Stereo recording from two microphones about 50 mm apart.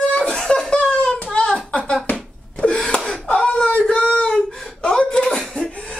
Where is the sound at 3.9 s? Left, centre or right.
Left.